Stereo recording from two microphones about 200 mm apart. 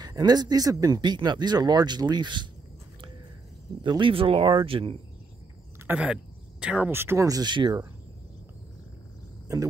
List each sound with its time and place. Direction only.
0.0 s speech: 20° right (ahead or behind)
3.8 s speech: 25° right (ahead or behind)
5.9 s speech: 5° right (ahead or behind); by 7.8 s 20° right (ahead or behind)